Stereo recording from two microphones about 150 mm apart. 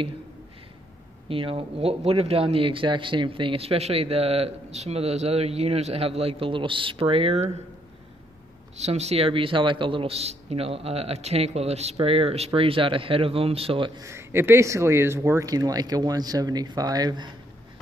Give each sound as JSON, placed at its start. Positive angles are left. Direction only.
{"t": 1.3, "sound": "speech", "side_deg": -40}
{"t": 8.7, "sound": "speech", "side_deg": -45}
{"t": 14.0, "sound": "speech", "side_deg": -15}